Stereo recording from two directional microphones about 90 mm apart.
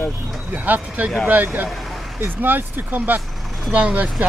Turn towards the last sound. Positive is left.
turn(degrees=-15)  # may be behind; listen again after turning